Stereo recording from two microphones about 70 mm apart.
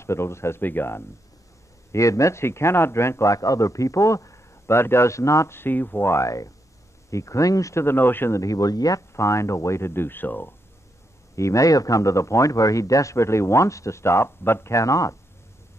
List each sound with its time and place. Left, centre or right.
0.0 s speech: left
1.9 s a man's voice: left
6.2 s a man's voice: left
7.8 s speech: left
8.3 s speech: left
9.1 s speech: left
11.3 s a man's voice: left